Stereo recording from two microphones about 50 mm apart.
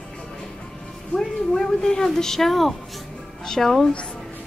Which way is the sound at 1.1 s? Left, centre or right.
Centre.